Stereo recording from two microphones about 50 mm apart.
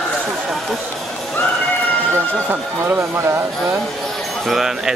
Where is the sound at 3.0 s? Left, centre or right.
Right.